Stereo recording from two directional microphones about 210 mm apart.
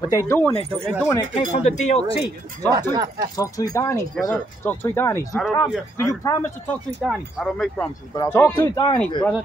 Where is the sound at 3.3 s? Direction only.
15° left (ahead or behind).